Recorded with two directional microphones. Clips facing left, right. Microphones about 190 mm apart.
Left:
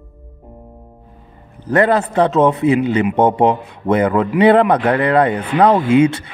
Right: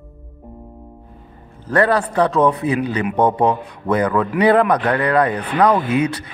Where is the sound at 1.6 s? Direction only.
20° left (ahead or behind).